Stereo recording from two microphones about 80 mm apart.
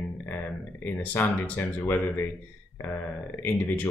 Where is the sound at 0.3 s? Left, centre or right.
Left.